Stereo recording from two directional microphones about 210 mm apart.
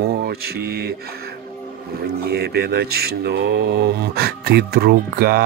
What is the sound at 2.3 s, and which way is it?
Speech, 50° right (ahead or behind).